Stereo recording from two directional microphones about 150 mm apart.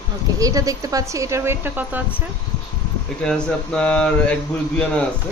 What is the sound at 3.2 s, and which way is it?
Speech, 5° left (ahead or behind).